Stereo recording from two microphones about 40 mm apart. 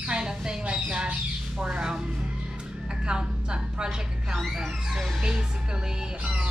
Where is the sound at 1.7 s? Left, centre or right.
Centre.